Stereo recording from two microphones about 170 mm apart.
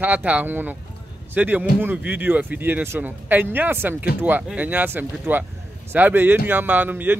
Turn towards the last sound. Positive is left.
turn(degrees=-10)  # may be behind; listen again after turning